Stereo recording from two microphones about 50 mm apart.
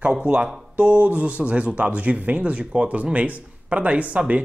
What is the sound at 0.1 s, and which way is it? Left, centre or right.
Speech, centre.